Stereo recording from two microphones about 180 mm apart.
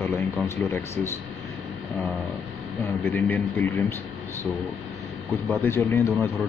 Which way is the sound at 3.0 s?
10° left (ahead or behind).